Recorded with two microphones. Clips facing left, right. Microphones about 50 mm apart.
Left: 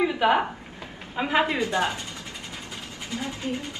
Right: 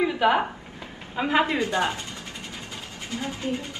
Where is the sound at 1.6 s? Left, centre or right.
Right.